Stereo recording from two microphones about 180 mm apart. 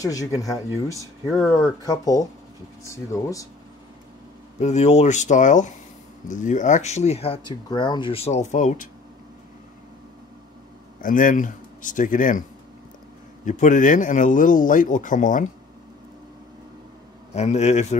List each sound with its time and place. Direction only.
0.0 s speech: 20° left (ahead or behind)
1.4 s speech: 5° left (ahead or behind)
2.8 s speech: 15° left (ahead or behind)
4.6 s speech: 40° left (ahead or behind)
11.0 s speech: 50° left (ahead or behind)
13.5 s speech: 45° left (ahead or behind)
17.3 s speech: 40° left (ahead or behind)